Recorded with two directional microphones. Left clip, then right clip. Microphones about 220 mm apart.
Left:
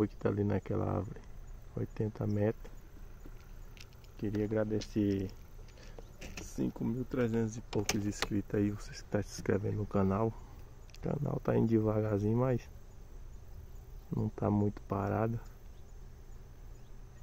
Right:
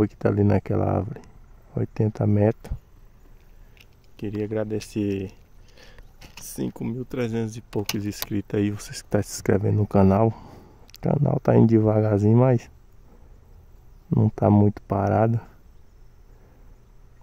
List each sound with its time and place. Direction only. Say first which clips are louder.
0.0 s speech: right 11 dB; 45° right (ahead or behind)
4.2 s speech: right 6 dB; 55° right (ahead or behind)
6.4 s speech: right 7 dB; 55° right (ahead or behind)
14.1 s speech: right 14 dB; 50° right (ahead or behind)